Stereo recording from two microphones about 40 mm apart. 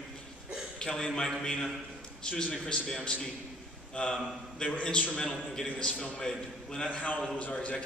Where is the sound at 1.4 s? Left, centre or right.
Centre.